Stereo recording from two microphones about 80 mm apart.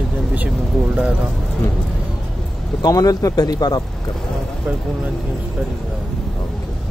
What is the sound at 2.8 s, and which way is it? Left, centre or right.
Speech, left.